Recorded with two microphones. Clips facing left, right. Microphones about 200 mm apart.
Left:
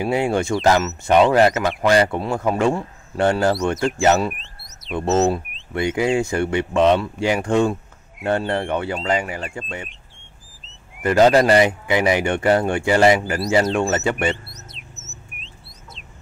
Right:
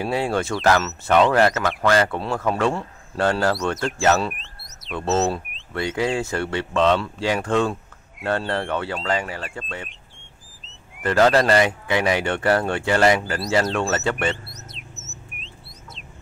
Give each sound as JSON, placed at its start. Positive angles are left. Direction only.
{"t": 0.0, "sound": "speech", "side_deg": 15}
{"t": 4.3, "sound": "alarm", "side_deg": 0}
{"t": 4.9, "sound": "speech", "side_deg": 15}
{"t": 9.4, "sound": "speech", "side_deg": 0}
{"t": 9.8, "sound": "bird", "side_deg": 0}
{"t": 11.0, "sound": "speech", "side_deg": 15}
{"t": 14.1, "sound": "chirp", "side_deg": 0}